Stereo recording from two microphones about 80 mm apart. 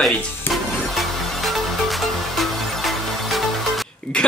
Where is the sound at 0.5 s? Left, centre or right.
Centre.